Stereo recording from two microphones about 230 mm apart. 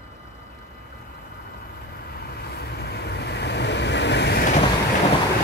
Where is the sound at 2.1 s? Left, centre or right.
Left.